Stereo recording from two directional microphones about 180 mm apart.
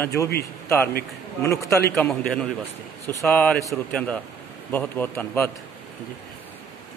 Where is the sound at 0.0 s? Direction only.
15° left (ahead or behind).